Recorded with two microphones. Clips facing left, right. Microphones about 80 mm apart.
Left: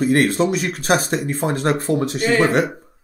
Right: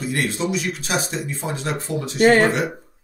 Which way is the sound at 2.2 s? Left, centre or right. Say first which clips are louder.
Right 4 dB; right.